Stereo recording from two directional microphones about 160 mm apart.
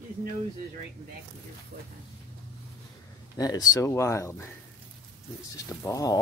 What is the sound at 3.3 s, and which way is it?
Speech, 25° left (ahead or behind).